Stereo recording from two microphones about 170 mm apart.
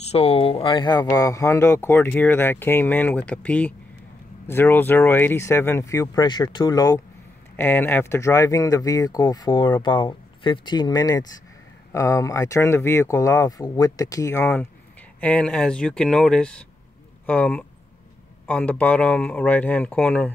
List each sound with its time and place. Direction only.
0.0 s speech: 35° left (ahead or behind); by 20.2 s 10° left (ahead or behind)